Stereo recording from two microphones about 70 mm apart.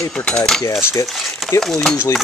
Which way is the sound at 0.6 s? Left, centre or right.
Left.